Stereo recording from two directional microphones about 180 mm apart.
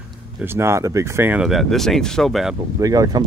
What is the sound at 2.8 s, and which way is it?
Speech, 20° right (ahead or behind).